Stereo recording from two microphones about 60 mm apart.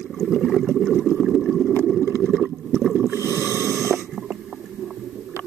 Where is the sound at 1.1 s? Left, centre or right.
Centre.